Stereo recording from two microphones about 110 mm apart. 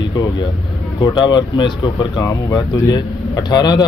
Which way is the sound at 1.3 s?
45° left (ahead or behind).